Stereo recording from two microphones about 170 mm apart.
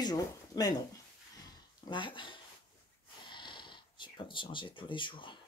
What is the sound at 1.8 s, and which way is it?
Speech, 30° left (ahead or behind).